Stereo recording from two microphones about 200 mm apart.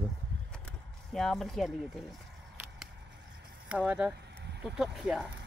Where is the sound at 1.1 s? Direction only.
Centre (ahead or behind).